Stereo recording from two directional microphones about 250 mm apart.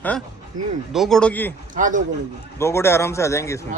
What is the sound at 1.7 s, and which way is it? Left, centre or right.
Speech, right.